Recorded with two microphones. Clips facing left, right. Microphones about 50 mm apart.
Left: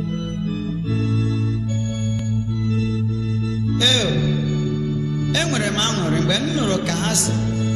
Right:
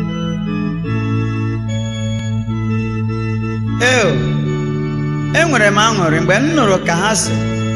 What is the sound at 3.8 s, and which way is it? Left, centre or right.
Speech, right.